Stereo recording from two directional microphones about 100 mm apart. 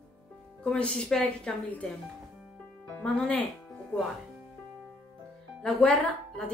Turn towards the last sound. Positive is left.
turn(degrees=10)  # may be behind; listen again after turning